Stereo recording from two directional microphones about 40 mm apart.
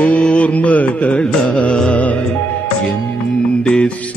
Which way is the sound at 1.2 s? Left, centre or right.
Left.